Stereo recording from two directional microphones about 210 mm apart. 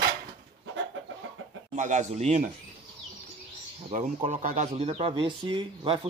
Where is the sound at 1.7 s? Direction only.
35° right (ahead or behind).